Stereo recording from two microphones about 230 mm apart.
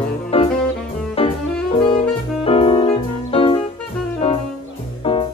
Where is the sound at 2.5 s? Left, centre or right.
Left.